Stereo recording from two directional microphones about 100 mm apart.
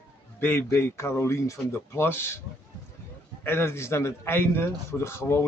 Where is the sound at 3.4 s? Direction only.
20° left (ahead or behind).